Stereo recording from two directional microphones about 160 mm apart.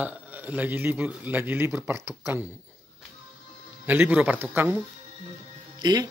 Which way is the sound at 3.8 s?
10° right (ahead or behind).